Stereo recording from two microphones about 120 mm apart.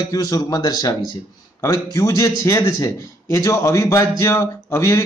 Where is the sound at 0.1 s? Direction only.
30° left (ahead or behind).